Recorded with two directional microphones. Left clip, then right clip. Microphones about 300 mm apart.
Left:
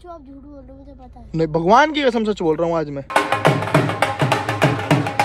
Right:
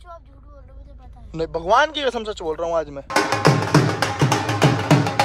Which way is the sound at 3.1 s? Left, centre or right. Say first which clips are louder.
Left 1 dB; left.